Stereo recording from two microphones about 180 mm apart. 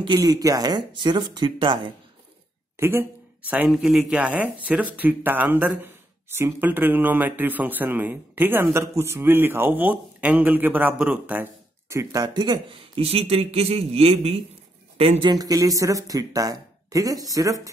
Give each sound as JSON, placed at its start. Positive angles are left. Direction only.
{"t": 0.0, "sound": "speech", "side_deg": -25}
{"t": 2.8, "sound": "speech", "side_deg": -10}